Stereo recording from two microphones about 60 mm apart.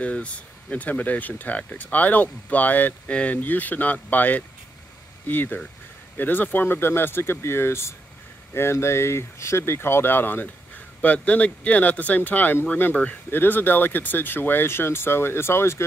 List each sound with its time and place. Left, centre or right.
0.0 s speech: left
13.3 s speech: left